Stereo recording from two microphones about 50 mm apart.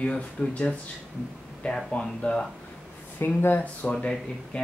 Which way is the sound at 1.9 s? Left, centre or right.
Centre.